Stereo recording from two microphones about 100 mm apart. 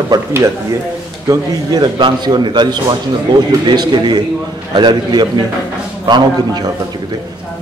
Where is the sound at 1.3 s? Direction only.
45° right (ahead or behind).